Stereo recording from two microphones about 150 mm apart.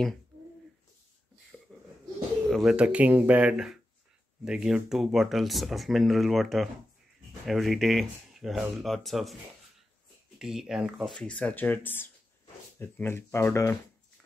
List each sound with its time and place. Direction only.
1.5 s a sound: 5° right (ahead or behind)
2.5 s speech: 5° right (ahead or behind)
10.4 s speech: 5° right (ahead or behind)
11.1 s speech: 10° left (ahead or behind)